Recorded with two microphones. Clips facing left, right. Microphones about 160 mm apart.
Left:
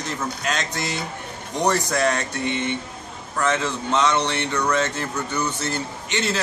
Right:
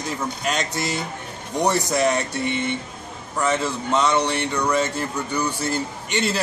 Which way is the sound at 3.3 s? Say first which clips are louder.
Right 1 dB; 10° right (ahead or behind).